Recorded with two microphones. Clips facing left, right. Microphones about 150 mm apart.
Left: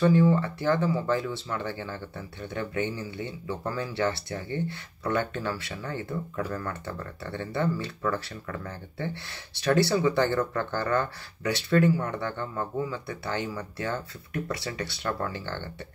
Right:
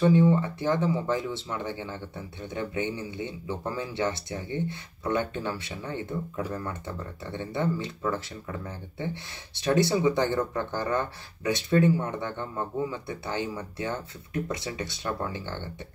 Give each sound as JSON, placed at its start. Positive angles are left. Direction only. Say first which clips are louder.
{"t": 0.0, "sound": "speech", "louder": "even", "side_deg": -20}